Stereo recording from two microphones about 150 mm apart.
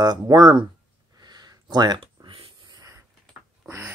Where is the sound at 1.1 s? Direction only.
25° right (ahead or behind).